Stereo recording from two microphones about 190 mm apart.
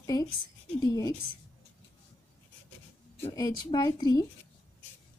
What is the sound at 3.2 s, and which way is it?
A woman's voice, 20° left (ahead or behind).